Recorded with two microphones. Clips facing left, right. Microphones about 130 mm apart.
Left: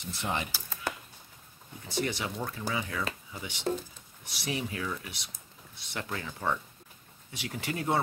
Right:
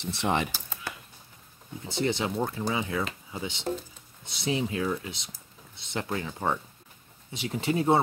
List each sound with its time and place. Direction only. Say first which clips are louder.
0.0 s speech: right 6 dB; 75° right (ahead or behind)
1.9 s speech: right 4 dB; 25° right (ahead or behind)